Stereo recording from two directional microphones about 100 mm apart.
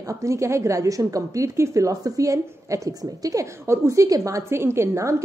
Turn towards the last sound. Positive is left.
turn(degrees=-30)  # may be behind; listen again after turning